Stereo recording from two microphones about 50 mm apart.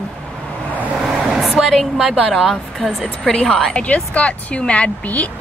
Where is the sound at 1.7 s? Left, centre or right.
Centre.